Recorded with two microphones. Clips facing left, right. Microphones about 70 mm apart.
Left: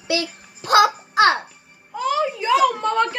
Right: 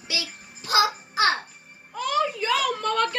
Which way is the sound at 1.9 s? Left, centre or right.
Centre.